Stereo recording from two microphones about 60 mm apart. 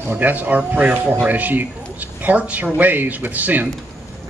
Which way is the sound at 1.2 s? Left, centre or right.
Right.